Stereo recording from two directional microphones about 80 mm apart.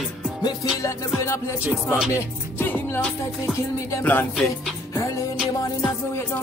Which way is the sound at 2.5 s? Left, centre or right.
Left.